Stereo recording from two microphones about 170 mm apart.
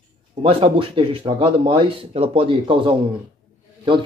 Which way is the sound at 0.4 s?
35° right (ahead or behind).